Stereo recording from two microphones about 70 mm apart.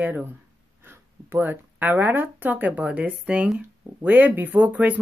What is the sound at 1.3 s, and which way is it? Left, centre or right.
Speech, right.